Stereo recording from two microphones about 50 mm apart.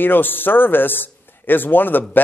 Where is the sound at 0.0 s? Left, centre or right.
Left.